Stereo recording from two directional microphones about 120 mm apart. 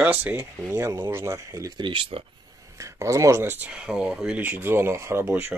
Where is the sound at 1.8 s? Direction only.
45° right (ahead or behind).